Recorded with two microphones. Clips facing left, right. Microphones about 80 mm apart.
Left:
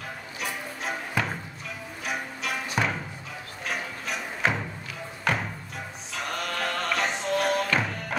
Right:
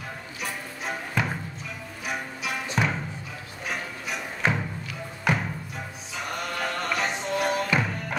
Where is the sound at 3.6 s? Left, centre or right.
Centre.